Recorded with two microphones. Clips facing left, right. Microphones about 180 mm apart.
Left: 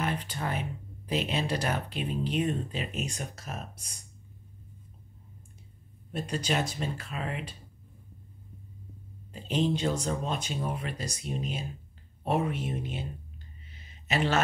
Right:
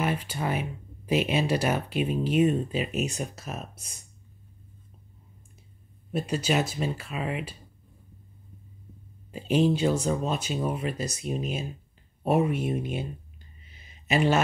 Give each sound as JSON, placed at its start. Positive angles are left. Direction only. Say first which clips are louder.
{"t": 0.0, "sound": "speech", "louder": "right 4 dB", "side_deg": -10}
{"t": 6.1, "sound": "speech", "louder": "right 4 dB", "side_deg": -5}
{"t": 9.3, "sound": "speech", "louder": "right 5 dB", "side_deg": -10}
{"t": 11.3, "sound": "speech", "louder": "right 3 dB", "side_deg": -20}
{"t": 12.3, "sound": "speech", "louder": "right 5 dB", "side_deg": -10}
{"t": 13.7, "sound": "a sound", "louder": "right 5 dB", "side_deg": -10}